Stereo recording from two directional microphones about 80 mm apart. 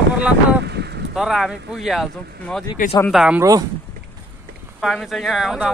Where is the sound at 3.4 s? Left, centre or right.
Right.